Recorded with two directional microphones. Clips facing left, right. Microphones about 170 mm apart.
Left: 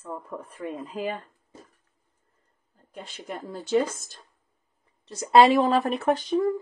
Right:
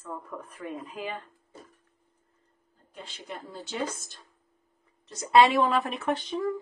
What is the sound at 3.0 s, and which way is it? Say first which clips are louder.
Speech: left 5 dB; 50° left (ahead or behind).